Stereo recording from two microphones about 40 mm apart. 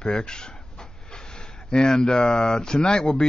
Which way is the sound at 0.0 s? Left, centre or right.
Left.